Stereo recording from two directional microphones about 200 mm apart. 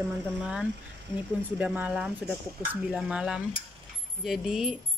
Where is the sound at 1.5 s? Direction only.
5° right (ahead or behind).